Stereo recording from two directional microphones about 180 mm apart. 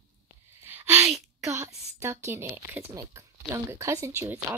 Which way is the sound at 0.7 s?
10° right (ahead or behind).